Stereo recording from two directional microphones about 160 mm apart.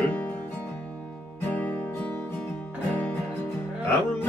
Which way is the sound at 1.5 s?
10° left (ahead or behind).